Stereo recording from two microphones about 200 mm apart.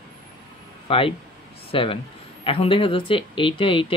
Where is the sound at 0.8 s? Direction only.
25° left (ahead or behind).